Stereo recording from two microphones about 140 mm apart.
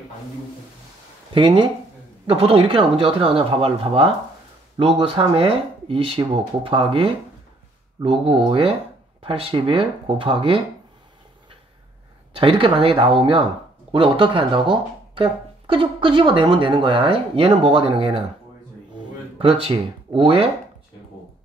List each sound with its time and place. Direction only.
1.3 s speech: 35° right (ahead or behind)
12.4 s speech: 40° right (ahead or behind)
19.3 s speech: 40° right (ahead or behind)